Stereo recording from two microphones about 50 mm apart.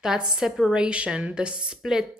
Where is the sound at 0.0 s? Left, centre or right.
Centre.